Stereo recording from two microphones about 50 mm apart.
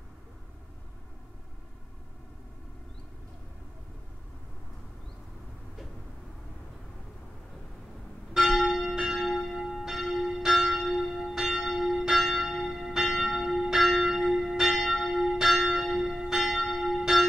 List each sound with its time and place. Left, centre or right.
8.3 s church bell: centre